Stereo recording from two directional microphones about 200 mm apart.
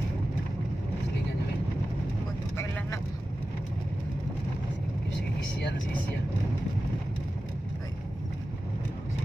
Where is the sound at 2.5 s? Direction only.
10° left (ahead or behind).